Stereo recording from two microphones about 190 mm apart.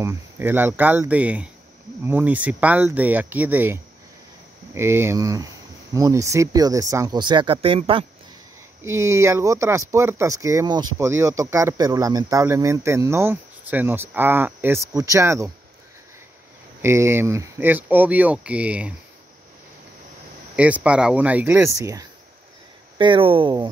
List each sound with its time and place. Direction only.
0.0 s speech: 15° right (ahead or behind); by 8.0 s 30° right (ahead or behind)
8.8 s speech: 15° right (ahead or behind)
16.8 s speech: 15° right (ahead or behind)
20.5 s speech: 5° right (ahead or behind); by 23.7 s 25° right (ahead or behind)